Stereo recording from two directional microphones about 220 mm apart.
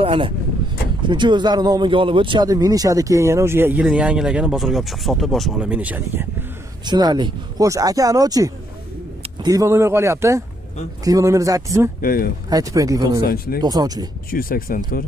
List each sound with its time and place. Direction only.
0.0 s speech: 25° right (ahead or behind); by 6.2 s 5° right (ahead or behind)
6.8 s speech: 20° right (ahead or behind)
12.0 s speech: 40° left (ahead or behind)
12.4 s speech: 15° right (ahead or behind)
13.2 s speech: 45° left (ahead or behind)
13.6 s speech: 15° right (ahead or behind)
14.3 s speech: 40° left (ahead or behind)